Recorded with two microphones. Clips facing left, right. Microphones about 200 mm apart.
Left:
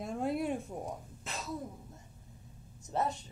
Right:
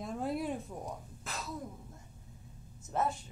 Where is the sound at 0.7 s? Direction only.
25° left (ahead or behind).